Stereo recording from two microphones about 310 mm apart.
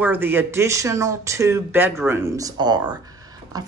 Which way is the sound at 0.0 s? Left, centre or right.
Centre.